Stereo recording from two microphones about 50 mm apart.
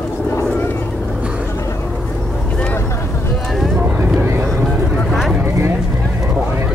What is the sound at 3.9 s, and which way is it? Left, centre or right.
Vehicle, right.